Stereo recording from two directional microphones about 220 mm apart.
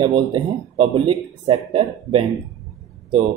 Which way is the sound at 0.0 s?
25° right (ahead or behind).